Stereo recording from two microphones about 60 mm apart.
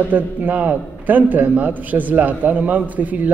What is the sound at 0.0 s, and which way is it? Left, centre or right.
A man's voice, right.